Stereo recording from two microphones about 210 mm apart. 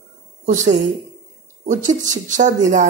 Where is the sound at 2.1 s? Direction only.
35° right (ahead or behind).